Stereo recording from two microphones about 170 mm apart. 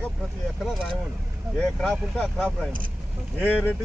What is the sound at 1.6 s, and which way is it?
Speech, 5° left (ahead or behind).